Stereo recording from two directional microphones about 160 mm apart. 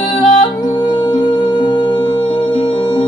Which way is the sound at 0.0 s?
25° left (ahead or behind).